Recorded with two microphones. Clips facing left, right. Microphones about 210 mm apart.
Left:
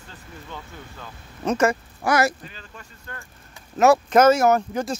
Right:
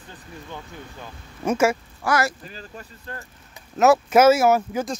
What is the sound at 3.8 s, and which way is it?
Speech, 5° right (ahead or behind).